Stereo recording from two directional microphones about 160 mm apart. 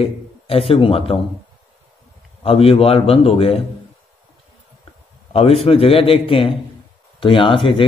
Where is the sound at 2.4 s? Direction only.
35° left (ahead or behind).